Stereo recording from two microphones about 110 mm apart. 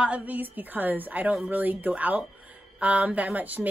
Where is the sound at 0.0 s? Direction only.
10° right (ahead or behind).